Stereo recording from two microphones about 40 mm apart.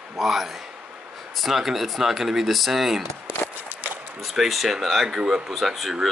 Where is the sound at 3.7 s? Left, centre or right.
Right.